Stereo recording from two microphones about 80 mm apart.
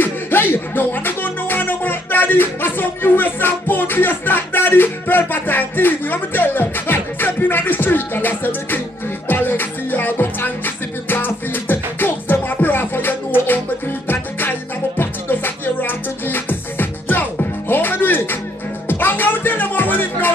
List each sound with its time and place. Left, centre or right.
0.0 s music: left